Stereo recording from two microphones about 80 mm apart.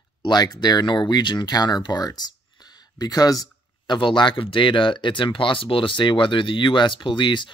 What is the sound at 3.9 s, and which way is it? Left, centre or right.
Speech, left.